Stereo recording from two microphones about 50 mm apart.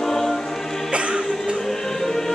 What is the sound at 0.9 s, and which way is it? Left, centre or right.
Music, right.